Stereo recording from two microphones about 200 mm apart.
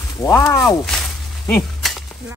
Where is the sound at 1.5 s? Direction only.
Centre (ahead or behind).